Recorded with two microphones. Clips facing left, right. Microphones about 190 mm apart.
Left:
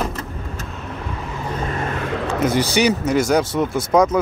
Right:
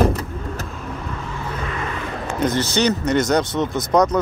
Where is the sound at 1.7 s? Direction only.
45° left (ahead or behind); by 2.4 s 65° left (ahead or behind).